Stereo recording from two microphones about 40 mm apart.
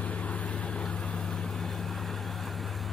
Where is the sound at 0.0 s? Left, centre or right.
Left.